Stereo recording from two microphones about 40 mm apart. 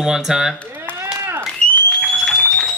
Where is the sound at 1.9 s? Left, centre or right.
Centre.